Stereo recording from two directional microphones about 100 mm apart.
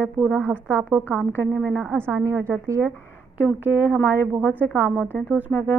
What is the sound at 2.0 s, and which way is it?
Speech, 30° right (ahead or behind).